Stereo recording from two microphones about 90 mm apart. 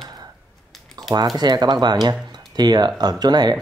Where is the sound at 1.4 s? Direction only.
50° right (ahead or behind).